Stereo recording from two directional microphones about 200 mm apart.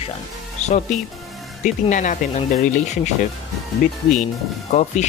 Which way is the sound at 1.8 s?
40° left (ahead or behind).